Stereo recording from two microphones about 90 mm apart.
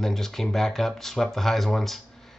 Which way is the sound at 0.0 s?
5° left (ahead or behind).